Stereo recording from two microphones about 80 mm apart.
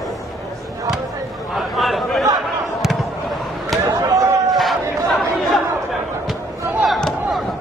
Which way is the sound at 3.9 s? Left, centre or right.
Right.